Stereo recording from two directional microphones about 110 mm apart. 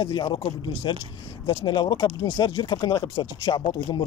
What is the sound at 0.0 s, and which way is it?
Speech, 45° left (ahead or behind).